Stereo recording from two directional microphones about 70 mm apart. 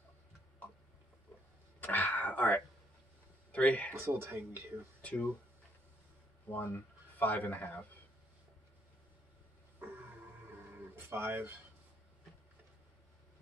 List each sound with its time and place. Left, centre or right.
1.8 s a sound: left
3.5 s speech: left
3.9 s speech: right
5.0 s speech: centre
6.5 s speech: left
11.0 s speech: right